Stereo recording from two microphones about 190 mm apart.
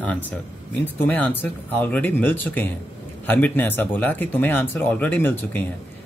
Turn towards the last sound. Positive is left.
turn(degrees=10)  # may be behind; listen again after turning